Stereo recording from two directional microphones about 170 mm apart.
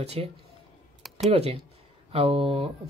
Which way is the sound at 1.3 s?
35° right (ahead or behind).